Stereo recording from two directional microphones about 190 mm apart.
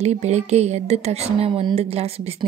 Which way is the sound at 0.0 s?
35° right (ahead or behind).